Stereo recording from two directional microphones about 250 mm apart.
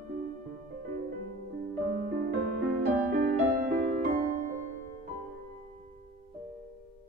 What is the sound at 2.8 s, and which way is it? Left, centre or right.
Music, right.